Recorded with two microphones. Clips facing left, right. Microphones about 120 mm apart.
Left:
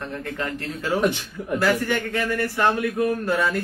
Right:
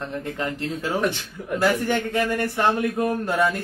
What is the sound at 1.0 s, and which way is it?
Speech, 15° left (ahead or behind).